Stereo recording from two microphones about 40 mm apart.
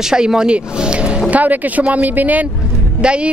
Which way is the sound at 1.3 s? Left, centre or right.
Right.